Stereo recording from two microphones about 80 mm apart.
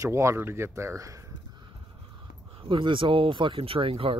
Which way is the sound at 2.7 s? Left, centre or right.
Right.